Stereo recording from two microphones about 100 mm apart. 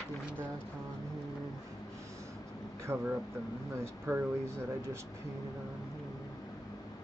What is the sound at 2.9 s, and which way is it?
Speech, 25° right (ahead or behind).